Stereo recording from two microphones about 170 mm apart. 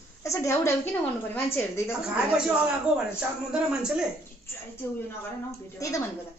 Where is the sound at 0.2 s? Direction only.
15° left (ahead or behind).